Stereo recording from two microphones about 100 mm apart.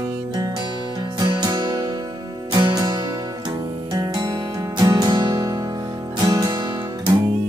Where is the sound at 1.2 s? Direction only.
40° right (ahead or behind).